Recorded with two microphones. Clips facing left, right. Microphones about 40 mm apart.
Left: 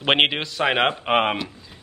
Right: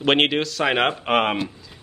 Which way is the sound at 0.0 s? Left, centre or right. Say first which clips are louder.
Right 1 dB; centre.